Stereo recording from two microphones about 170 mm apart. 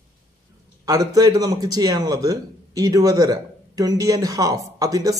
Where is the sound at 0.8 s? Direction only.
20° right (ahead or behind).